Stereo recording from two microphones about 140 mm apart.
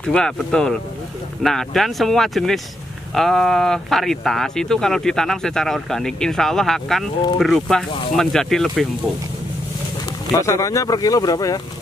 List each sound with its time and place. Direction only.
0.0 s speech: 5° left (ahead or behind)
10.3 s speech: 25° left (ahead or behind)